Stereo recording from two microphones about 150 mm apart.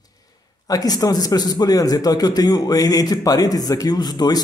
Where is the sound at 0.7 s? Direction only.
25° left (ahead or behind).